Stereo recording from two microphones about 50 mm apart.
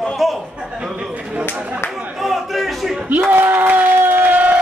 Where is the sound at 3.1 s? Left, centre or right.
Right.